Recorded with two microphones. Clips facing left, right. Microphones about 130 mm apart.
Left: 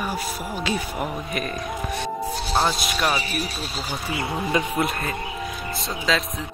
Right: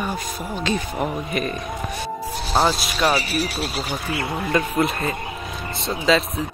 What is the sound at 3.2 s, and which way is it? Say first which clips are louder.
Speech: right 4 dB; 85° right.